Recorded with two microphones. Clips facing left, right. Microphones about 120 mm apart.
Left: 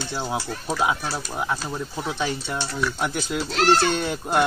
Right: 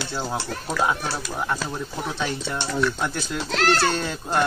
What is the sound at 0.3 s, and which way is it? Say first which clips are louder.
Speech: left 1 dB; 10° left (ahead or behind).